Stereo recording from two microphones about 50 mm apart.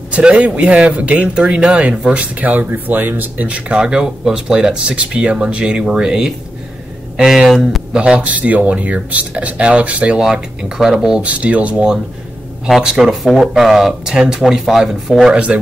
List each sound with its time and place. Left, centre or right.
0.1 s a man's voice: right
3.7 s speech: centre
8.2 s speech: right
10.3 s speech: centre
11.2 s speech: right
12.9 s speech: centre
15.3 s speech: right